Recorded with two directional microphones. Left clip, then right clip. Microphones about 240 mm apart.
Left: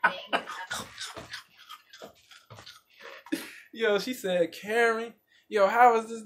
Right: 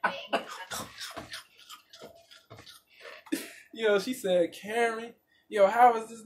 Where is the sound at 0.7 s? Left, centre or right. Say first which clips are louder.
Left 2 dB; centre.